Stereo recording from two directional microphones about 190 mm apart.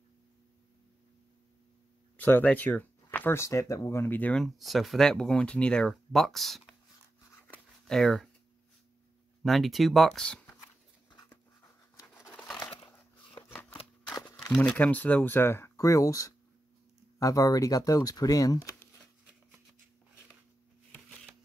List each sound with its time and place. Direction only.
2.1 s speech: 10° left (ahead or behind)
7.2 s a sound: 10° left (ahead or behind)
9.4 s speech: centre (ahead or behind)
11.1 s writing: 20° left (ahead or behind)
12.4 s crumpling: centre (ahead or behind)
12.6 s crushing: 20° left (ahead or behind)
13.5 s scissors: 10° left (ahead or behind)
14.5 s speech: 5° left (ahead or behind)